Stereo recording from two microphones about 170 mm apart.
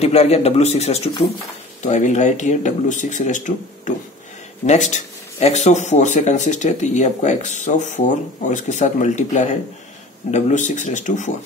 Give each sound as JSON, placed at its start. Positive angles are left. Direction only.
{"t": 0.0, "sound": "speech", "side_deg": 40}